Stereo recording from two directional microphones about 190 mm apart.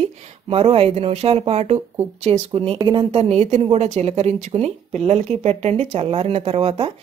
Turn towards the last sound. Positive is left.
turn(degrees=-30)  # may be behind; listen again after turning